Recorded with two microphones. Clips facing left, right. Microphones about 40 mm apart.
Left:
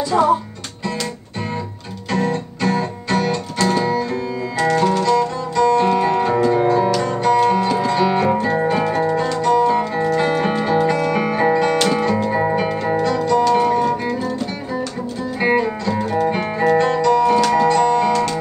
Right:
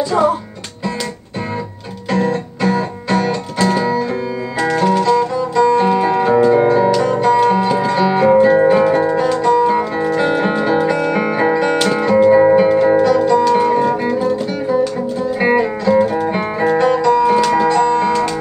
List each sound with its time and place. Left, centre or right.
0.1 s music: centre
2.0 s music: centre